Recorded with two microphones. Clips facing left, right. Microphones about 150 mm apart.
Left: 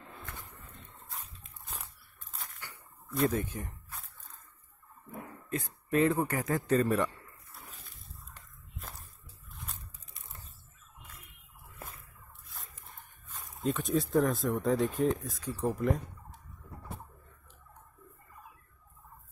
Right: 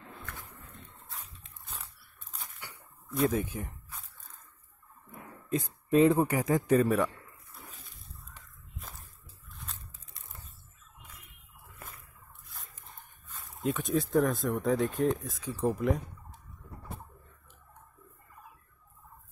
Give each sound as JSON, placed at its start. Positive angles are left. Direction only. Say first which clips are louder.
{"t": 0.2, "sound": "pigeon", "louder": "right 1 dB", "side_deg": 20}
{"t": 3.1, "sound": "speech", "louder": "right 1 dB", "side_deg": 0}
{"t": 5.5, "sound": "speech", "louder": "right 5 dB", "side_deg": -20}
{"t": 13.7, "sound": "speech", "louder": "right 1 dB", "side_deg": 0}